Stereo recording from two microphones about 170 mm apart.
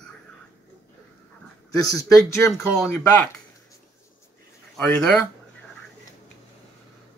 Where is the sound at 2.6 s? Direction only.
5° left (ahead or behind).